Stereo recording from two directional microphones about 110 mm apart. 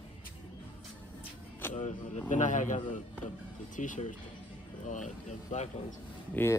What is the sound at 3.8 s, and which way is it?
Speech, 90° left.